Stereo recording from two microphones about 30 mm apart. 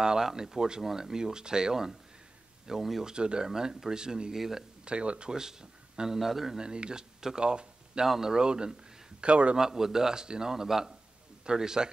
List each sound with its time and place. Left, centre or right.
0.0 s speech: right
3.0 s speech: right
4.4 s speech: centre
4.8 s speech: right
5.3 s speech: right
6.1 s speech: centre
6.6 s speech: right
9.2 s speech: right
9.6 s speech: right